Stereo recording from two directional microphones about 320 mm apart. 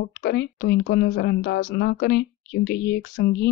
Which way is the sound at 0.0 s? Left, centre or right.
Left.